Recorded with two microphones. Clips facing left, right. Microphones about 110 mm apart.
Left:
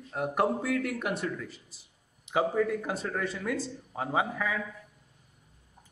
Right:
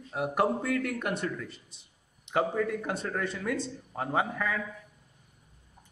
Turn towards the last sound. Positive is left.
turn(degrees=5)  # may be behind; listen again after turning